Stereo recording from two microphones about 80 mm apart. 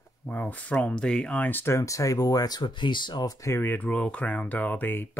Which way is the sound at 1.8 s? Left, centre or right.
Left.